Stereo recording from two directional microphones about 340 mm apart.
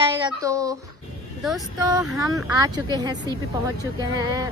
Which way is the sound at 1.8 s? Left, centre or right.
Centre.